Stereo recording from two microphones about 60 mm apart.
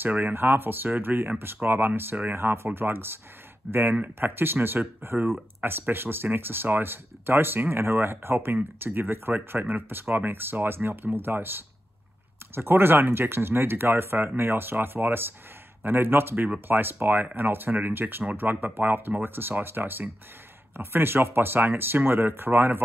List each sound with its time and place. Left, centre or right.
0.0 s speech: right
3.6 s speech: centre
4.2 s speech: right